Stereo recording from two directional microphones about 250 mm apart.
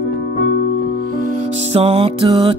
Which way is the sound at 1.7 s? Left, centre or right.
Right.